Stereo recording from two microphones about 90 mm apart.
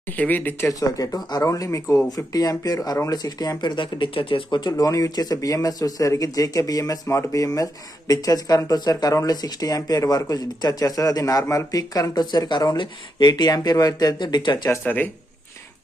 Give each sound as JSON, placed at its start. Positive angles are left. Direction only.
{"t": 0.2, "sound": "speech", "side_deg": 20}
{"t": 0.7, "sound": "speech", "side_deg": 40}
{"t": 2.0, "sound": "speech", "side_deg": 45}